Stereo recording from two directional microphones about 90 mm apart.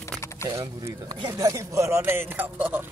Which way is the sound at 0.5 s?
40° right (ahead or behind).